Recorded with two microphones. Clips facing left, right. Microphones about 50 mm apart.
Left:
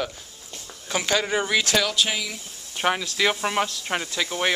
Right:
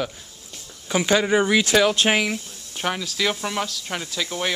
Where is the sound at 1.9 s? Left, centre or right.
Right.